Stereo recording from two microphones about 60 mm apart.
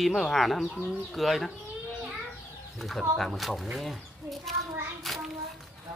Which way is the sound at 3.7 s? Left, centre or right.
Centre.